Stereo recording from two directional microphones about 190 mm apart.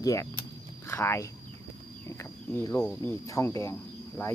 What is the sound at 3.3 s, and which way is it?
Speech, 15° left (ahead or behind).